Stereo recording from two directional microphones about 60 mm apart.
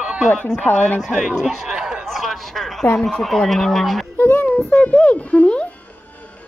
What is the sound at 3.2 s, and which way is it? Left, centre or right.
Speech, centre.